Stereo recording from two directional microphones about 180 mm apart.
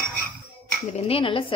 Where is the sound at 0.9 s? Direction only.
35° left (ahead or behind).